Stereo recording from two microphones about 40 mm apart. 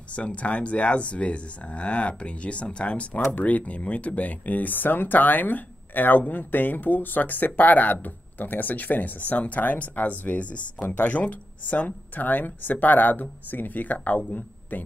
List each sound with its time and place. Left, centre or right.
0.1 s speech: left
3.3 s speech: left